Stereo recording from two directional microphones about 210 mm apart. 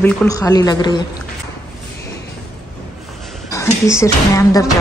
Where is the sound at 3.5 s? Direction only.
15° left (ahead or behind).